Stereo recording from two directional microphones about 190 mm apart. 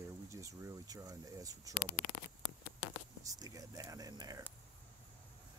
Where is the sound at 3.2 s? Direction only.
20° right (ahead or behind).